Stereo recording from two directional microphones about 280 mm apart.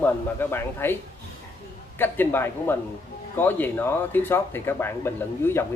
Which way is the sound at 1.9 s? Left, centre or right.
Centre.